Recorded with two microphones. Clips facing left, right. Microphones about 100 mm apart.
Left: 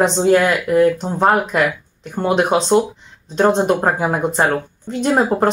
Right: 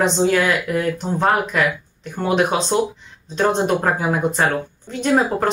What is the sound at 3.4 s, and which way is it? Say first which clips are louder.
Speech: left 3 dB; 30° left (ahead or behind).